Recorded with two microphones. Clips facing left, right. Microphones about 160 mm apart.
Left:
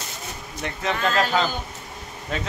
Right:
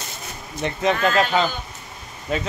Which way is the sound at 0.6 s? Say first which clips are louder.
Right 6 dB; 20° right (ahead or behind).